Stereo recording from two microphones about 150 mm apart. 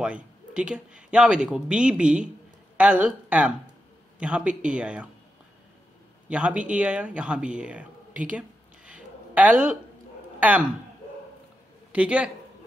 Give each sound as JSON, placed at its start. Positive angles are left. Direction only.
{"t": 0.0, "sound": "speech", "side_deg": -5}
{"t": 6.2, "sound": "speech", "side_deg": -10}
{"t": 11.9, "sound": "speech", "side_deg": -10}